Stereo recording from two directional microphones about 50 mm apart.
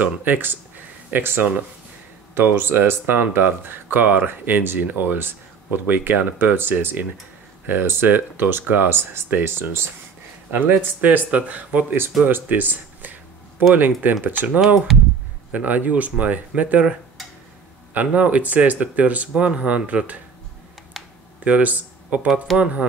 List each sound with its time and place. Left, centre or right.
0.0 s speech: right
2.5 s speech: right
2.9 s speech: right
10.5 s speech: right
17.9 s speech: right
20.9 s computer keyboard: centre
21.5 s speech: right